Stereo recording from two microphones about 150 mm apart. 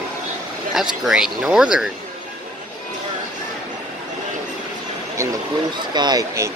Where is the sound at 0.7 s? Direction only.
Centre (ahead or behind).